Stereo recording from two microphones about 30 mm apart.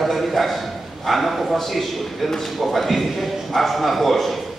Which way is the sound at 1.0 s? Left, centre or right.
Centre.